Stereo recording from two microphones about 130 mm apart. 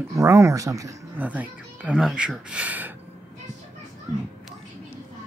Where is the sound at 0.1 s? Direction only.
25° right (ahead or behind).